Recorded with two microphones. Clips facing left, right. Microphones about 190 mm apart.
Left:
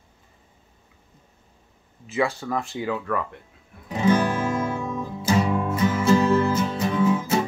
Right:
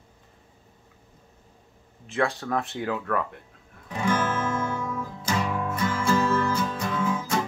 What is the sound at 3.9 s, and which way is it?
Music, 20° left (ahead or behind).